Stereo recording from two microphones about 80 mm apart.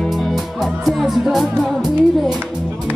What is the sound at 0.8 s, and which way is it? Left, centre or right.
Music, centre.